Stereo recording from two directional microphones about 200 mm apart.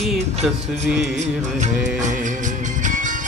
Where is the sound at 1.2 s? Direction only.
35° right (ahead or behind).